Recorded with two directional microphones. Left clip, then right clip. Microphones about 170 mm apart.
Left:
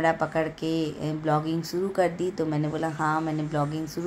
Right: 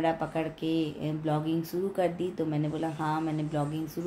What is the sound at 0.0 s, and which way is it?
Speech, 15° left (ahead or behind).